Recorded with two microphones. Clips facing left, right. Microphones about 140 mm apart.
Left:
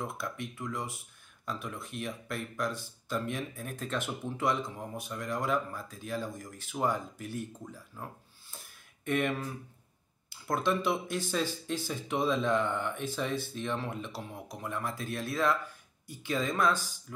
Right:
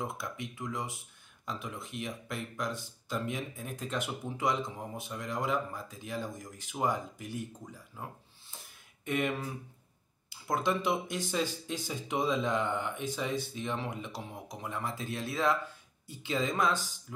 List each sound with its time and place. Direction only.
0.0 s speech: 20° right (ahead or behind)
9.0 s speech: 15° right (ahead or behind)